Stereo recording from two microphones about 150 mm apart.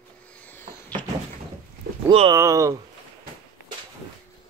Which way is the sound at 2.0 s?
35° right (ahead or behind).